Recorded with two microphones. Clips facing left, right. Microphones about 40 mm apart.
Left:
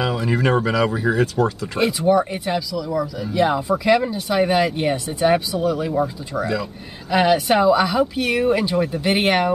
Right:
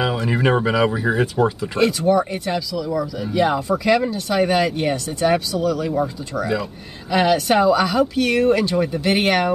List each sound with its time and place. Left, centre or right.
0.2 s speech: centre
1.8 s speech: centre
7.1 s speech: centre